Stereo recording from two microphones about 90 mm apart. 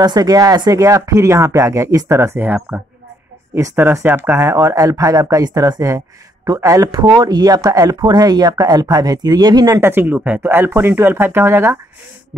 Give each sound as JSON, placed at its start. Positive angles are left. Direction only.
{"t": 0.0, "sound": "speech", "side_deg": -45}
{"t": 2.3, "sound": "speech", "side_deg": -20}
{"t": 3.5, "sound": "speech", "side_deg": -30}
{"t": 6.9, "sound": "speech", "side_deg": -50}
{"t": 9.8, "sound": "speech", "side_deg": -25}